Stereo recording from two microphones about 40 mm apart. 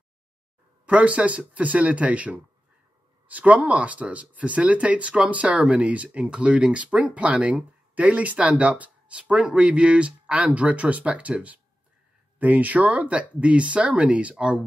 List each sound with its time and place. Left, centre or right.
0.8 s speech: right